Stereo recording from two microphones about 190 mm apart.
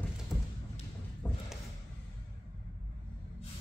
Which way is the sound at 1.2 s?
10° left (ahead or behind).